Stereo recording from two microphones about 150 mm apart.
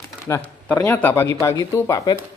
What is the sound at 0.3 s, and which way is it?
Speech, 20° left (ahead or behind).